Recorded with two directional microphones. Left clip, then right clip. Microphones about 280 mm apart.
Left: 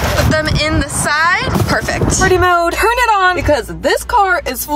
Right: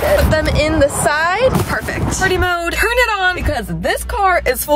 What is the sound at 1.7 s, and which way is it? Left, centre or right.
Speech, centre.